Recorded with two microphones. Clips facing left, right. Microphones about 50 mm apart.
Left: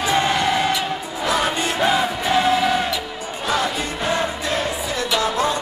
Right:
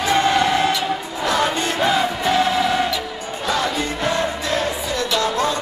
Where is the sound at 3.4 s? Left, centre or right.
Centre.